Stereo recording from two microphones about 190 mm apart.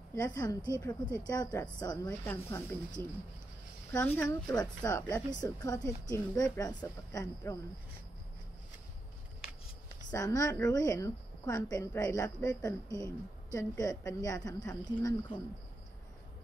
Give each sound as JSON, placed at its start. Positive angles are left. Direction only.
{"t": 0.1, "sound": "a woman's voice", "side_deg": 15}
{"t": 3.9, "sound": "a woman's voice", "side_deg": 10}
{"t": 10.1, "sound": "a woman's voice", "side_deg": 15}